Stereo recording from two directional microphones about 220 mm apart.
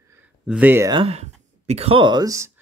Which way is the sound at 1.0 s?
30° right (ahead or behind).